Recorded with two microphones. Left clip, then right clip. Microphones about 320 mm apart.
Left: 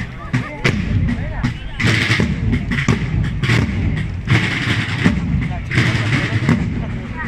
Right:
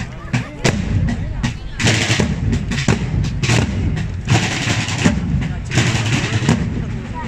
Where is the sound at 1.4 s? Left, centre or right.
Right.